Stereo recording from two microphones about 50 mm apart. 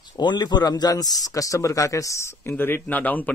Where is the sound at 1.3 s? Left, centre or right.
Left.